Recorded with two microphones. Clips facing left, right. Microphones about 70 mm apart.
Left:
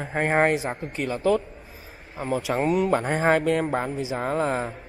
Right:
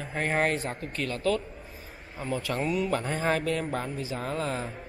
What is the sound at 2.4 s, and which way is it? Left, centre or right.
Speech, centre.